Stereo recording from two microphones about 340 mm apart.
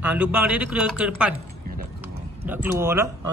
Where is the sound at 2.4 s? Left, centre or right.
Centre.